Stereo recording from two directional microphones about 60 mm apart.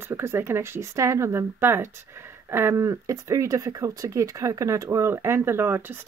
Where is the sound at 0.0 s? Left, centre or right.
Right.